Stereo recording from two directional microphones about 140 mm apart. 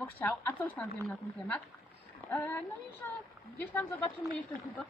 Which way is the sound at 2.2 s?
15° left (ahead or behind).